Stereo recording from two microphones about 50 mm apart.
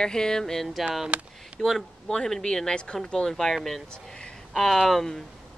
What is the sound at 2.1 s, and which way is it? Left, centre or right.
Speech, centre.